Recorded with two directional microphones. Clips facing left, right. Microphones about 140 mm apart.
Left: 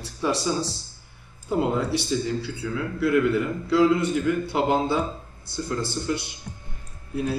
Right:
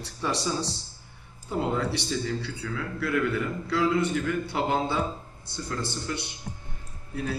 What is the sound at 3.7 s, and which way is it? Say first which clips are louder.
Speech: left 5 dB; 10° left (ahead or behind).